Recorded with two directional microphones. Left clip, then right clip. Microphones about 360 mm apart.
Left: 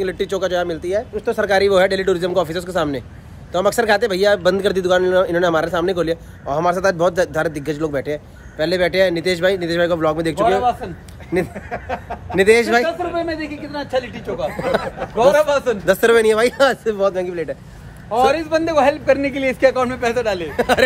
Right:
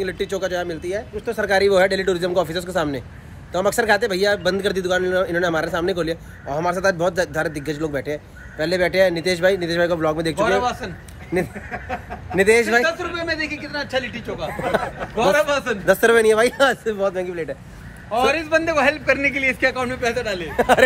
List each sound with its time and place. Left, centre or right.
0.0 s a man's voice: centre
11.3 s speech: centre
13.7 s a man's voice: left
14.5 s speech: centre
15.3 s a man's voice: left
15.8 s a man's voice: centre
18.1 s a man's voice: left
20.5 s speech: centre